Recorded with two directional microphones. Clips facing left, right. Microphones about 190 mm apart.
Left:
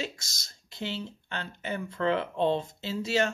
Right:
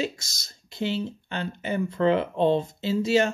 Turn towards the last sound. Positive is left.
turn(degrees=-15)  # may be behind; listen again after turning